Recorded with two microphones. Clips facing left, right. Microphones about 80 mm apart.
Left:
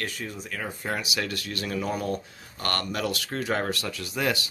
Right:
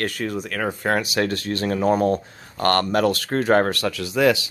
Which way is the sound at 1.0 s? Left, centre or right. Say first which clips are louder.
Right 8 dB; right.